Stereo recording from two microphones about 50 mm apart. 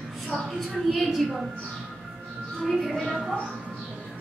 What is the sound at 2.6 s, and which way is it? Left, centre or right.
Speech, centre.